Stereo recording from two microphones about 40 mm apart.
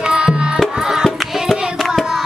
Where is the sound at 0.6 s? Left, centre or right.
Centre.